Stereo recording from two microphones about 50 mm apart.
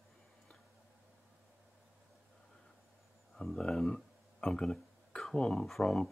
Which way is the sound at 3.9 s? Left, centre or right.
Centre.